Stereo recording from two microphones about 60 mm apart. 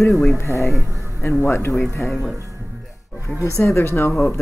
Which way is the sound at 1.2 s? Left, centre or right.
Left.